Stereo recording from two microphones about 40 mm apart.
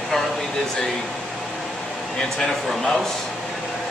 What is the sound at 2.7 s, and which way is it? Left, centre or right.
Speech, centre.